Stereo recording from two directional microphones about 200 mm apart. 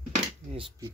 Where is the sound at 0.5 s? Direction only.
25° right (ahead or behind).